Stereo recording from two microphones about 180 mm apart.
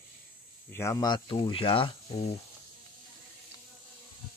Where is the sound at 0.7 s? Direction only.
15° left (ahead or behind); by 2.4 s 35° left (ahead or behind).